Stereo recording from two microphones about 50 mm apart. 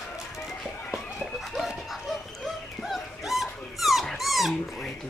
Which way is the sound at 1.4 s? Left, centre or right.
Centre.